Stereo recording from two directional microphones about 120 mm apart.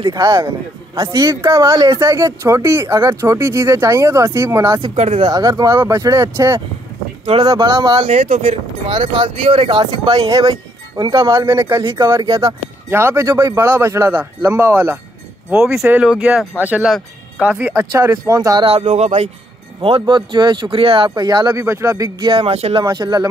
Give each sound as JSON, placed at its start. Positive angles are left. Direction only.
{"t": 0.0, "sound": "speech", "side_deg": -35}
{"t": 4.9, "sound": "speech", "side_deg": -65}
{"t": 5.2, "sound": "speech", "side_deg": -30}
{"t": 8.1, "sound": "speech", "side_deg": -90}
{"t": 8.8, "sound": "speech", "side_deg": -45}
{"t": 15.6, "sound": "speech", "side_deg": -5}
{"t": 17.7, "sound": "speech", "side_deg": -25}
{"t": 18.7, "sound": "speech", "side_deg": -70}
{"t": 19.8, "sound": "speech", "side_deg": -45}
{"t": 22.3, "sound": "speech", "side_deg": -55}
{"t": 22.8, "sound": "speech", "side_deg": -35}